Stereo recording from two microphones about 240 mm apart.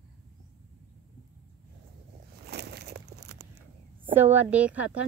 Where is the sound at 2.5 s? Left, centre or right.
Right.